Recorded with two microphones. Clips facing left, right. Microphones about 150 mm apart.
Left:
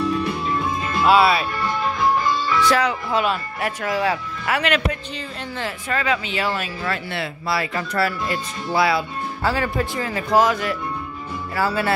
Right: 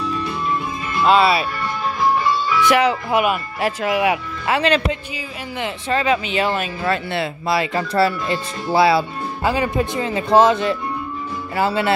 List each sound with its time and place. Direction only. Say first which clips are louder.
1.0 s speech: right 1 dB; 5° left (ahead or behind)
2.7 s speech: right 4 dB; 25° right (ahead or behind)
4.6 s speech: right 3 dB; 30° right (ahead or behind)